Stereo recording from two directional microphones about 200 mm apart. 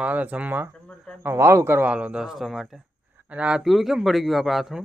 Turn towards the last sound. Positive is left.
turn(degrees=0)  # may be behind; listen again after turning